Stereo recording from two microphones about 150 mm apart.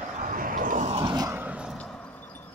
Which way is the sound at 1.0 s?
25° right (ahead or behind).